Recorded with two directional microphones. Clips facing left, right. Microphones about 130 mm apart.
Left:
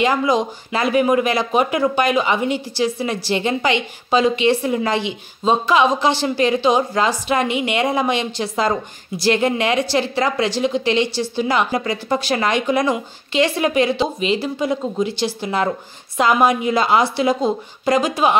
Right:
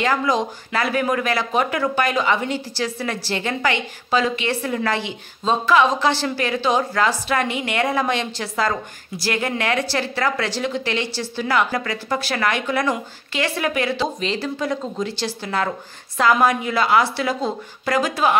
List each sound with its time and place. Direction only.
0.0 s speech: 15° left (ahead or behind)